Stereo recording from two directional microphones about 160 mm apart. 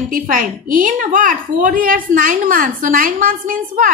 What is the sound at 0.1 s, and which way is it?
A woman's voice, 55° right (ahead or behind).